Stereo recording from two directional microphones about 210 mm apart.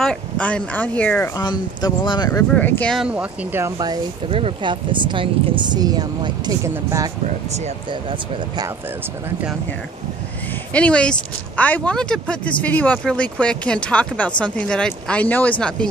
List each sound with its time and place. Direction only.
0.0 s speech: 5° left (ahead or behind)
2.5 s speech: 5° left (ahead or behind); by 7.1 s 15° right (ahead or behind)
7.2 s speech: 30° right (ahead or behind)
10.7 s speech: 5° left (ahead or behind)